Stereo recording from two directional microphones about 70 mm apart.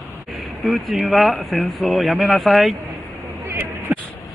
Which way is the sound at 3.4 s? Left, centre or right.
Right.